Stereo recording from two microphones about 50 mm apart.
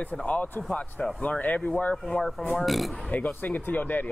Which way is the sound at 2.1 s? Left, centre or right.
Centre.